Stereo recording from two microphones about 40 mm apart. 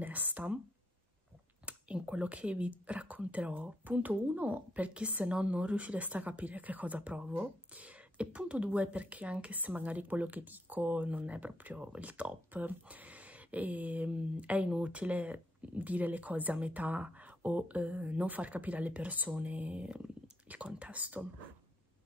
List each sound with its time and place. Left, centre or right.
0.0 s speech: right
1.7 s speech: right